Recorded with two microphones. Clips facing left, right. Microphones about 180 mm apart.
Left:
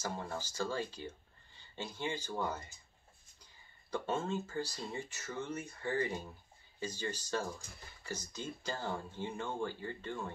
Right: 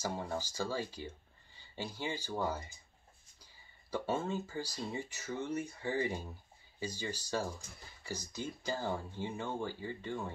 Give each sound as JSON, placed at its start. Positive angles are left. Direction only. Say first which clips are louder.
{"t": 0.0, "sound": "speech", "louder": "right 2 dB", "side_deg": -10}
{"t": 3.9, "sound": "speech", "louder": "right 1 dB", "side_deg": -10}